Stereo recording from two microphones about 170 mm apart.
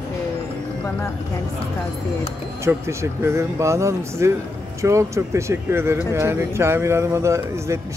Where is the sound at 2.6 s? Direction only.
15° right (ahead or behind).